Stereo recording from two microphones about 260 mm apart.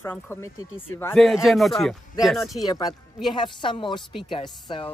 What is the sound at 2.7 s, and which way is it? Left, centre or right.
A woman's voice, centre.